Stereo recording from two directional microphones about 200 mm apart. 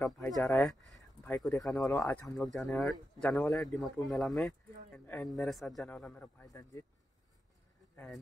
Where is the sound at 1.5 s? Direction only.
15° left (ahead or behind).